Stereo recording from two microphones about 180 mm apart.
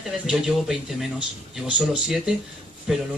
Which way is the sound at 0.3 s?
Centre (ahead or behind).